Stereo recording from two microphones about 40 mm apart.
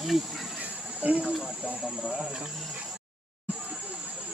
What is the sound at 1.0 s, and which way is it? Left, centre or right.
Speech, right.